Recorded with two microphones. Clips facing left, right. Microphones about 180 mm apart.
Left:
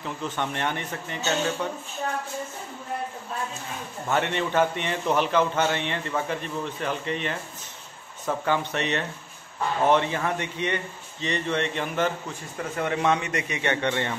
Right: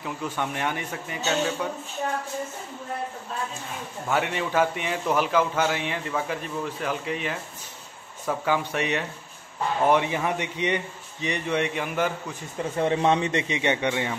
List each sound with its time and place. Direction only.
0.0 s speech: 5° right (ahead or behind)
4.1 s a man's voice: 5° right (ahead or behind)
12.7 s speech: 30° right (ahead or behind); by 14.1 s 10° right (ahead or behind)